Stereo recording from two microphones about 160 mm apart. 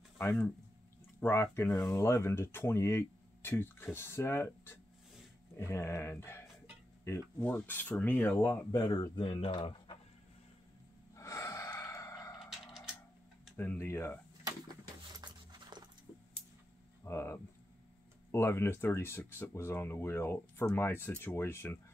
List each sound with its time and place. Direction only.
0.2 s speech: 15° left (ahead or behind)
1.7 s speech: centre (ahead or behind)
2.0 s speech: 15° left (ahead or behind)
8.7 s speech: 25° left (ahead or behind)
11.1 s gasp: 20° left (ahead or behind)
12.4 s a sound: centre (ahead or behind)
13.6 s speech: 15° left (ahead or behind)
15.1 s a sound: 25° right (ahead or behind)
17.0 s a sound: 15° left (ahead or behind)
18.3 s speech: 15° left (ahead or behind)